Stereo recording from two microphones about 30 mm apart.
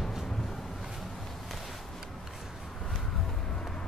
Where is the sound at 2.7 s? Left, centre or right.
Centre.